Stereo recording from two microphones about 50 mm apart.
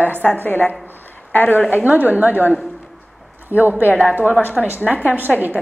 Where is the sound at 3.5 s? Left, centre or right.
Left.